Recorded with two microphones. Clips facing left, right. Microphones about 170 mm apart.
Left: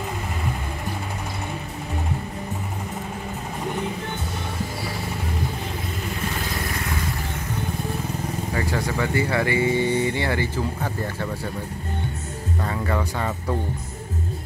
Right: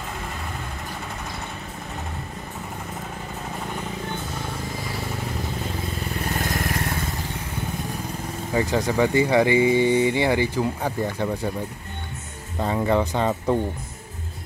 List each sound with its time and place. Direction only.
8.5 s speech: 20° right (ahead or behind)
12.5 s speech: 20° right (ahead or behind)